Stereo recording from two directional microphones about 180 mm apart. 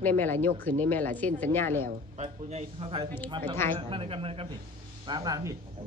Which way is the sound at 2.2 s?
35° right (ahead or behind).